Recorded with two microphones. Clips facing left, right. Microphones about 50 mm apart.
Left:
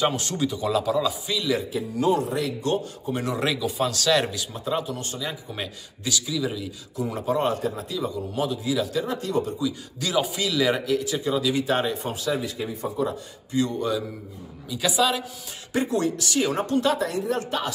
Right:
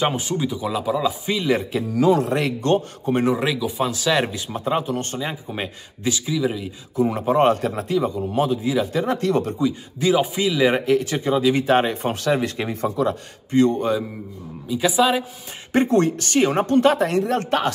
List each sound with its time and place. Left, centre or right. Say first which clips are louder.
0.2 s speech: right 2 dB; centre
1.2 s speech: right 4 dB; right
1.7 s speech: right 6 dB; right
3.3 s speech: right 2 dB; centre
4.4 s speech: right 4 dB; right
7.1 s speech: right 6 dB; right
9.0 s speech: right 5 dB; right
9.9 s speech: right 6 dB; right
10.9 s speech: right 5 dB; right
14.7 s speech: right 5 dB; centre
15.7 s speech: right 6 dB; right